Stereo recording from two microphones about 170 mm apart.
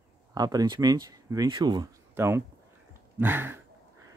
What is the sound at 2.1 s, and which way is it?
Speech, 15° right (ahead or behind).